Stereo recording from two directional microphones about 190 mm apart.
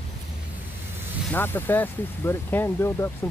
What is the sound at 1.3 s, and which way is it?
Speech, 10° left (ahead or behind).